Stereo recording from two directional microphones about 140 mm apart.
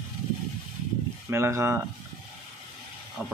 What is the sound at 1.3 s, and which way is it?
Speech, 20° right (ahead or behind).